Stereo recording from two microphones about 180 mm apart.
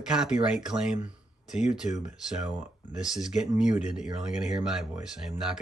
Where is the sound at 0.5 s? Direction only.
5° right (ahead or behind).